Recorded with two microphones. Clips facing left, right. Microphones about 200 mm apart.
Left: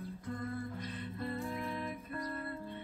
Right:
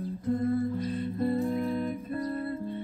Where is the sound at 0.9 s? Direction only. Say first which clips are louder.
Right 12 dB; 40° right (ahead or behind).